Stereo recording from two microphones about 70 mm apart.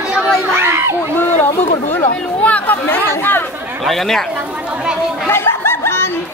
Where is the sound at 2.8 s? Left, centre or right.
Left.